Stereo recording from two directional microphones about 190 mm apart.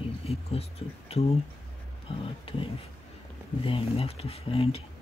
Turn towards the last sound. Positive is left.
turn(degrees=30)  # may be behind; listen again after turning